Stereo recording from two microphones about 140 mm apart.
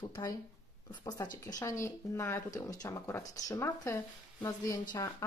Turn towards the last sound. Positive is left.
turn(degrees=25)  # may be behind; listen again after turning